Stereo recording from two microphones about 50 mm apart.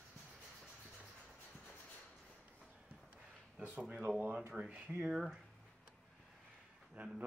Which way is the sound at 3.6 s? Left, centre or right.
Right.